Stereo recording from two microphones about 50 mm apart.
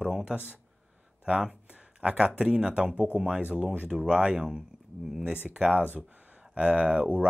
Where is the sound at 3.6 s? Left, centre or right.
Right.